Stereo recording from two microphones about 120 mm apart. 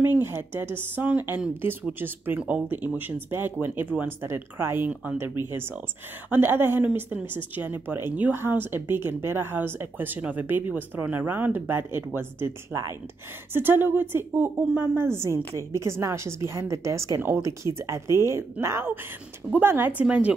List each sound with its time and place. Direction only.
0.0 s speech: 20° right (ahead or behind)
6.3 s a woman's voice: 15° right (ahead or behind)